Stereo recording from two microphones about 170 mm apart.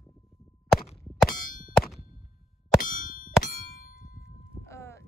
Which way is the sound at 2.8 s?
55° left (ahead or behind).